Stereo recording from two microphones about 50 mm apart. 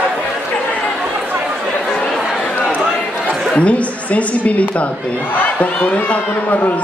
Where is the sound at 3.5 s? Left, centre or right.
Left.